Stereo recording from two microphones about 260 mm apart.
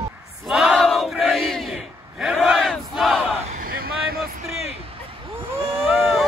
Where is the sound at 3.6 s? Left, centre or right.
Right.